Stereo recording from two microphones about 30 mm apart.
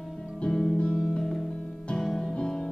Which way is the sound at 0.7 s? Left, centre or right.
Left.